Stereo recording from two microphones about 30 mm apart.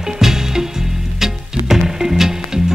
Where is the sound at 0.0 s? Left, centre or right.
Centre.